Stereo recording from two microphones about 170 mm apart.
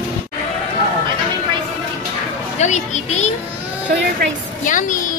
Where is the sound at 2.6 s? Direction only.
45° left (ahead or behind).